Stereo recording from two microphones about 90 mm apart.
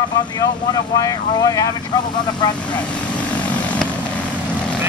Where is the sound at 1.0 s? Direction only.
40° left (ahead or behind).